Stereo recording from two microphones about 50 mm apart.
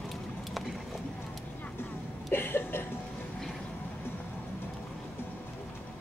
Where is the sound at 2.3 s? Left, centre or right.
Left.